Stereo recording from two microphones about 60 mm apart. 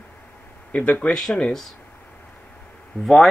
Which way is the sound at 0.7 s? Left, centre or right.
Left.